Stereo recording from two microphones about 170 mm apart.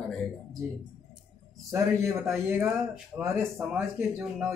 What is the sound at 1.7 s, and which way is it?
A man's voice, 15° right (ahead or behind).